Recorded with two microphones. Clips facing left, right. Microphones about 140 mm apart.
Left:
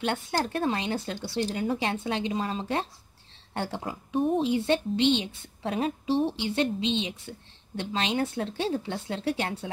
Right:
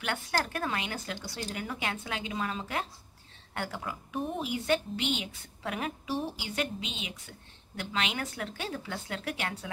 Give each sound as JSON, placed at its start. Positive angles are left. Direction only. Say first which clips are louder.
{"t": 0.0, "sound": "speech", "louder": "left 4 dB", "side_deg": 30}